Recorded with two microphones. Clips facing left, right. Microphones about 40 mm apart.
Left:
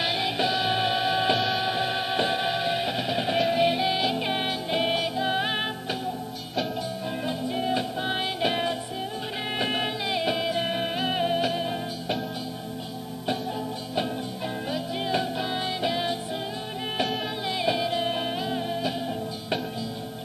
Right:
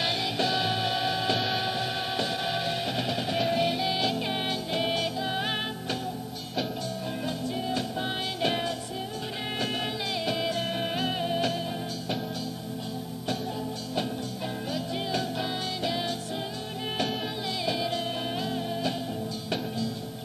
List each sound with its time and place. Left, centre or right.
0.0 s music: centre
1.4 s music: centre
1.7 s music: left
3.6 s music: centre
7.2 s music: left
14.7 s music: centre
17.6 s music: centre